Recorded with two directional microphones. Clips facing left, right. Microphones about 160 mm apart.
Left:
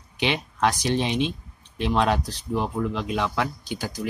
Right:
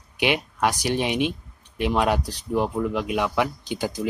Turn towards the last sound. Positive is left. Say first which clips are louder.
# right 3 dB
turn(degrees=-20)  # may be behind; listen again after turning